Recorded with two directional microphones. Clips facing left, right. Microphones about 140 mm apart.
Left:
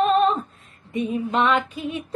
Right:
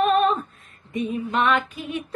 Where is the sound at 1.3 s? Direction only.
25° left (ahead or behind).